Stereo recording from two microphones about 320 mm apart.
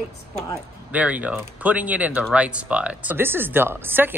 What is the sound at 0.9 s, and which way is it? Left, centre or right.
Speech, centre.